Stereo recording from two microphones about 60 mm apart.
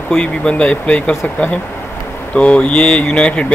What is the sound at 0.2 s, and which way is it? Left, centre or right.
Speech, centre.